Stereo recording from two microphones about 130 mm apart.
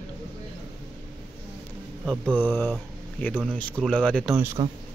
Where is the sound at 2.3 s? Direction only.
15° left (ahead or behind).